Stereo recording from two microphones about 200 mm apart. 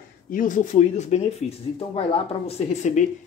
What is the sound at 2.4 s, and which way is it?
Speech, 35° left (ahead or behind).